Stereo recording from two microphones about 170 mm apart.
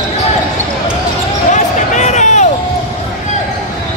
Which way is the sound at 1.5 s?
45° left (ahead or behind).